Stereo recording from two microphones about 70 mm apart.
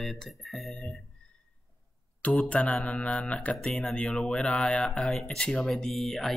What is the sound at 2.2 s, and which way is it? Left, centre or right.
Speech, centre.